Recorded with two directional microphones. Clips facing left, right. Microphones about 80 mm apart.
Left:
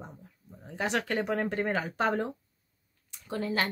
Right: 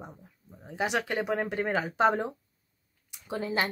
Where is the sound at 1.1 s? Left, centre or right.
Centre.